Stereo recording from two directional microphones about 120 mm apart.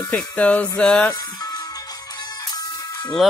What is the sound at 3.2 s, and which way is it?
Speech, 5° right (ahead or behind).